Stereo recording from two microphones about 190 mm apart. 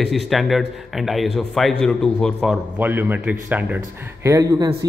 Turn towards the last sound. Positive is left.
turn(degrees=-15)  # may be behind; listen again after turning